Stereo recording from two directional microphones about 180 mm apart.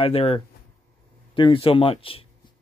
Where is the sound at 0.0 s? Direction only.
30° left (ahead or behind).